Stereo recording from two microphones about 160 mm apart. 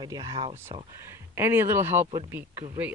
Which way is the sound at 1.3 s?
15° right (ahead or behind).